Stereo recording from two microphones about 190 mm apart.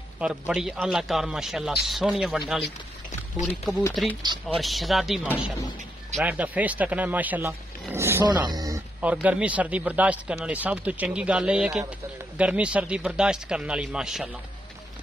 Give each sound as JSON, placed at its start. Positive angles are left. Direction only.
{"t": 0.2, "sound": "a man's voice", "side_deg": -5}
{"t": 3.9, "sound": "a man's voice", "side_deg": 0}
{"t": 4.2, "sound": "speech", "side_deg": -20}
{"t": 4.6, "sound": "a man's voice", "side_deg": 0}
{"t": 9.0, "sound": "a man's voice", "side_deg": -5}